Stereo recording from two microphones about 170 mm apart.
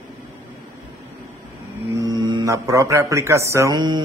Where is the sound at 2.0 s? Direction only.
20° right (ahead or behind).